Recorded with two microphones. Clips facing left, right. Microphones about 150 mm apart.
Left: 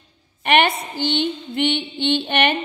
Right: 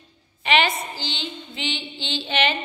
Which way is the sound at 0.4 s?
55° left (ahead or behind).